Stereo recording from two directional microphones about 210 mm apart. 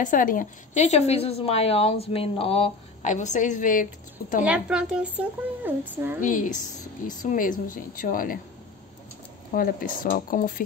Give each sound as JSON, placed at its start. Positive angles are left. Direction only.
{"t": 0.0, "sound": "a woman's voice", "side_deg": 40}
{"t": 4.5, "sound": "speech", "side_deg": -5}
{"t": 6.2, "sound": "a woman's voice", "side_deg": 40}
{"t": 9.5, "sound": "a woman's voice", "side_deg": 40}